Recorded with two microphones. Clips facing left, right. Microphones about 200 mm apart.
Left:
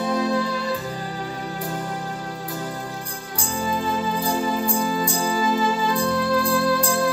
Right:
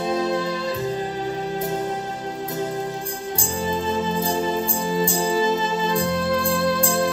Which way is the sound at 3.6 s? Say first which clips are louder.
Right 1 dB; 25° right (ahead or behind).